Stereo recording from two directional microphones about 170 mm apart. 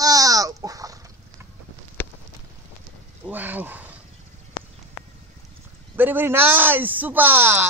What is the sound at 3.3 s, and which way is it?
Speech, 10° right (ahead or behind).